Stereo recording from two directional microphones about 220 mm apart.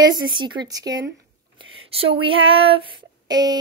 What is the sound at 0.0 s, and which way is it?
Speech, 20° right (ahead or behind).